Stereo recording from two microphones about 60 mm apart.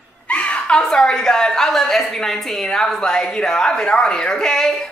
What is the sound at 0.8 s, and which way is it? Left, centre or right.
A woman's voice, centre.